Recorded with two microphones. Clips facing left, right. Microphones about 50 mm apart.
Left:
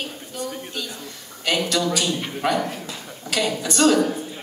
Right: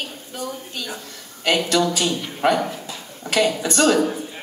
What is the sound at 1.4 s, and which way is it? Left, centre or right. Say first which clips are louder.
Speech: right 3 dB; right.